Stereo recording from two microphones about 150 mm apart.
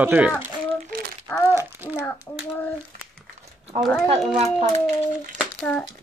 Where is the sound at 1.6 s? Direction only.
15° right (ahead or behind).